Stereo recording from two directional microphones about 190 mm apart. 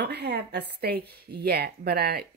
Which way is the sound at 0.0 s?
60° right (ahead or behind).